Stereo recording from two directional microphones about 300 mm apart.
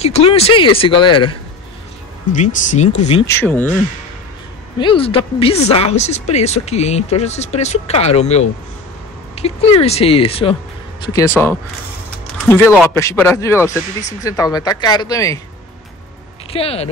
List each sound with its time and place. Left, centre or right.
0.0 s speech: centre
2.3 s speech: left
3.3 s speech: centre
4.7 s speech: centre
12.4 s speech: centre
12.9 s speech: centre
16.5 s speech: centre